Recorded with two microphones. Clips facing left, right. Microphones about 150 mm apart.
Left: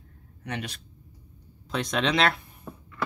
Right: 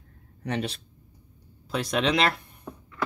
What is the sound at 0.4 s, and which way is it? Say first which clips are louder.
Speech: right 5 dB; 30° right (ahead or behind).